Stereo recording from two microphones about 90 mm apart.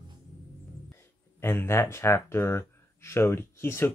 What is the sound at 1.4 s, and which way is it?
Speech, 30° left (ahead or behind).